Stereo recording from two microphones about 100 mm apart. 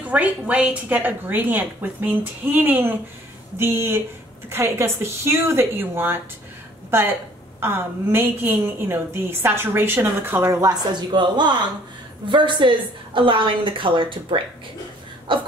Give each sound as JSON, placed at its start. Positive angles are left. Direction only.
{"t": 0.0, "sound": "a woman's voice", "side_deg": -15}
{"t": 10.6, "sound": "a woman's voice", "side_deg": -40}